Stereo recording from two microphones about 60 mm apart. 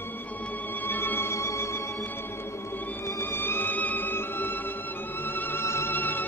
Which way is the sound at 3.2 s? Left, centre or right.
Left.